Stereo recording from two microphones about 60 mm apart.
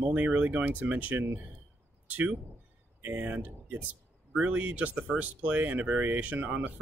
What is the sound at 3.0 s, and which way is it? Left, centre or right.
Speech, right.